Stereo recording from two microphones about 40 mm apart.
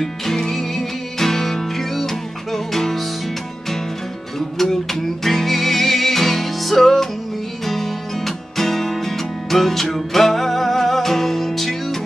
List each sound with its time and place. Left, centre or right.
0.0 s music: centre
4.4 s music: centre